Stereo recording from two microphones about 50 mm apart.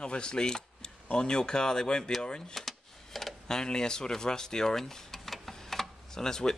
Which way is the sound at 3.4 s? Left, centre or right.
Centre.